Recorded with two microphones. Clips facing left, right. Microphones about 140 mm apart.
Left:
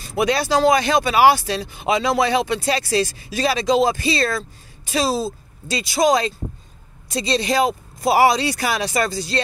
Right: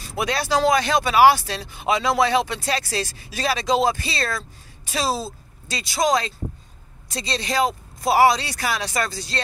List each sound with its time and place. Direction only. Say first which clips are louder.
0.2 s speech: left 4 dB; 10° left (ahead or behind)
5.8 s speech: left 4 dB; 15° left (ahead or behind)
7.3 s speech: left 3 dB; 10° left (ahead or behind)